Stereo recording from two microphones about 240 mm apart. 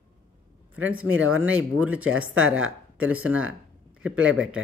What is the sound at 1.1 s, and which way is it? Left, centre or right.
Speech, right.